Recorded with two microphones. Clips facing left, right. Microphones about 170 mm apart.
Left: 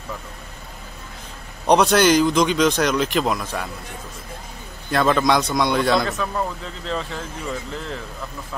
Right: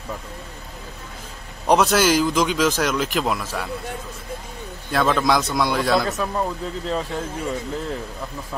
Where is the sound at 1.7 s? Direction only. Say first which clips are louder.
Left 2 dB; 5° right (ahead or behind).